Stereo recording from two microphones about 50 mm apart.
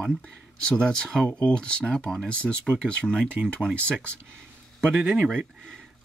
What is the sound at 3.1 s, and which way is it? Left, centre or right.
Speech, centre.